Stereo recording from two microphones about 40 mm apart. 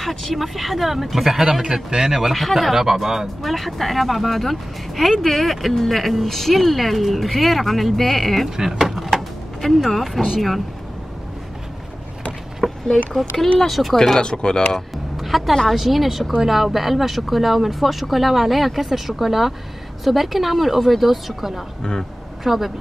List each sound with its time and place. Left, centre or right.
0.0 s speech: centre
2.1 s a man's voice: centre
3.4 s speech: centre
8.5 s a sound: centre
9.8 s speech: centre
12.6 s a sound: centre
13.6 s speech: centre
14.2 s speech: left
15.1 s music: centre
15.7 s speech: centre